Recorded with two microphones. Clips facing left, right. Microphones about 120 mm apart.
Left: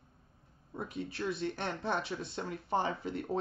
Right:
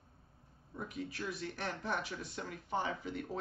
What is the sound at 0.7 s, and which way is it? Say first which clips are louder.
Speech: left 3 dB; 30° left (ahead or behind).